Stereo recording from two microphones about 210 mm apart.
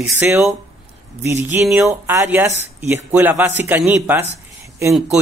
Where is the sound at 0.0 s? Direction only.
5° right (ahead or behind).